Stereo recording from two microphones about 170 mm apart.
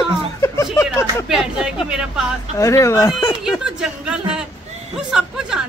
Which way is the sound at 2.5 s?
20° left (ahead or behind).